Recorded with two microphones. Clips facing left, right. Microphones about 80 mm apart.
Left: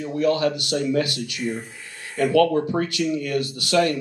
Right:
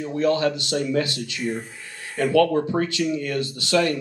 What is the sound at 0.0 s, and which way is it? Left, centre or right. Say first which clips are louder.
Speech: even; right.